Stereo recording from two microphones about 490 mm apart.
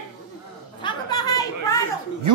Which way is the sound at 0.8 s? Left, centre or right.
Centre.